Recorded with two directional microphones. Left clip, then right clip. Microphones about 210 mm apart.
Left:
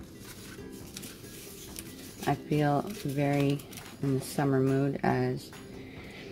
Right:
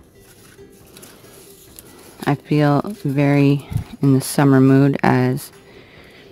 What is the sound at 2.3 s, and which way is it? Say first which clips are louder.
Speech: right 10 dB; 40° right (ahead or behind).